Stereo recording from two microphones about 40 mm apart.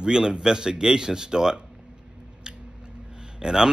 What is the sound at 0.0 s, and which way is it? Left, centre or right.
Speech, centre.